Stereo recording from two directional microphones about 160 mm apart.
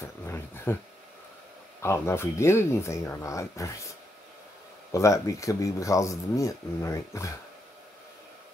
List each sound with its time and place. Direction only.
0.0 s a sound: 15° left (ahead or behind)
1.8 s speech: 15° left (ahead or behind)
4.9 s speech: 20° left (ahead or behind)